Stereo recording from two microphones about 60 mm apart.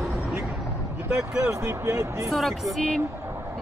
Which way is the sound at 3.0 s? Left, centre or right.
Right.